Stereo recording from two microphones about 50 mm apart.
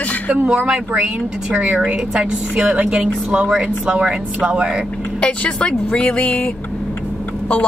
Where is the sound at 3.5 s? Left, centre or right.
Centre.